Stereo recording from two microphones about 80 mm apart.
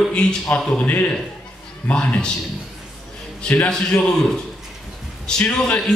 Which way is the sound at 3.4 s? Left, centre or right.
Centre.